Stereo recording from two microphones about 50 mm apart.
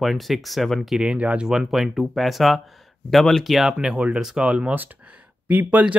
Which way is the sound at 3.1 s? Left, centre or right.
Centre.